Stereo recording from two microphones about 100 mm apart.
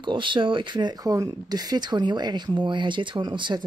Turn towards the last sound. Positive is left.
turn(degrees=-50)  # may be behind; listen again after turning